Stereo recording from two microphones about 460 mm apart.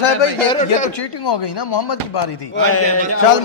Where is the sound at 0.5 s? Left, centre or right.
Centre.